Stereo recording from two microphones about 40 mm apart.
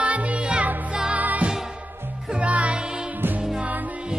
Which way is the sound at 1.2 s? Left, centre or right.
Right.